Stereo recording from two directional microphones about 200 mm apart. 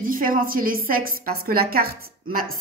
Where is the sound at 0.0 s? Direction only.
45° right (ahead or behind).